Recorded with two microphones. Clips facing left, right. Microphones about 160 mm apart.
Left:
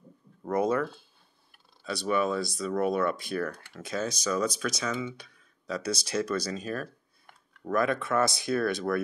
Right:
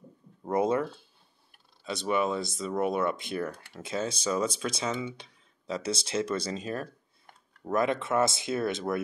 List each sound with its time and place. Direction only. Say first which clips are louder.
0.5 s speech: even; 25° right (ahead or behind)
1.9 s speech: left 1 dB; 20° right (ahead or behind)